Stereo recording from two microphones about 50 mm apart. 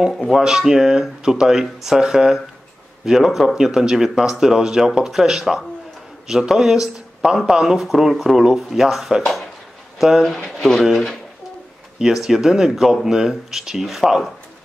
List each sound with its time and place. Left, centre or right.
0.3 s speech: centre
9.2 s a sound: centre
9.9 s speech: centre